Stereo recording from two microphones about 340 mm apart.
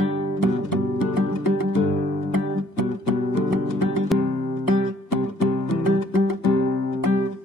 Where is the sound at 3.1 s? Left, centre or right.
Left.